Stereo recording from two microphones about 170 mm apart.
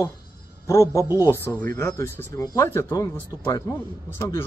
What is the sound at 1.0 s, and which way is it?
Speech, 15° right (ahead or behind).